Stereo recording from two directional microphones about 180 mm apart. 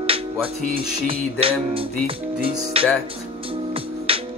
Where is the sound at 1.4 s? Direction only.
30° right (ahead or behind).